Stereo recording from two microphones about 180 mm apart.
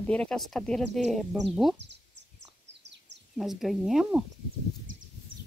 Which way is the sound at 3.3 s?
Centre (ahead or behind).